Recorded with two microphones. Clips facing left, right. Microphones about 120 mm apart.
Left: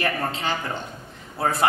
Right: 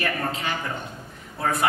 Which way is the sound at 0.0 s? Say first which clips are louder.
Left 2 dB; 30° left (ahead or behind).